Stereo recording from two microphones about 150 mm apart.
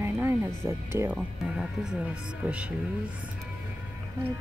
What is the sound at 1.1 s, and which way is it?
Speech, 5° right (ahead or behind).